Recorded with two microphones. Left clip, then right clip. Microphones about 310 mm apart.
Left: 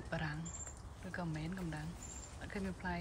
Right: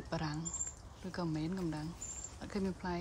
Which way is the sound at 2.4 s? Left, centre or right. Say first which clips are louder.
Right 3 dB; centre.